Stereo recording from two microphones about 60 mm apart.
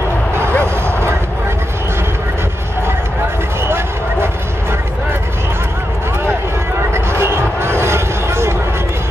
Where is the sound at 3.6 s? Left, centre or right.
Right.